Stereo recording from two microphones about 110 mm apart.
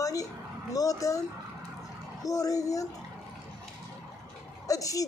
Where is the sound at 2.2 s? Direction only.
30° left (ahead or behind).